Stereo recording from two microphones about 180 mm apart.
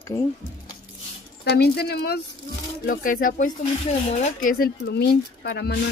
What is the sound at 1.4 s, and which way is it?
Speech, 65° left (ahead or behind).